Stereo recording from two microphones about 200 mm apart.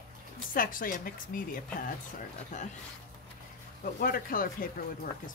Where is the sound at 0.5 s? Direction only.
45° left (ahead or behind).